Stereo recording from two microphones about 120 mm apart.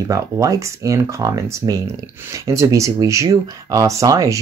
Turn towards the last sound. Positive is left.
turn(degrees=-30)  # may be behind; listen again after turning